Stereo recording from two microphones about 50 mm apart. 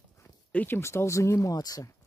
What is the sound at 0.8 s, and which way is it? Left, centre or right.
Speech, left.